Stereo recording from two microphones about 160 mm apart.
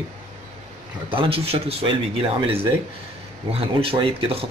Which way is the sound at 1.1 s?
35° right (ahead or behind).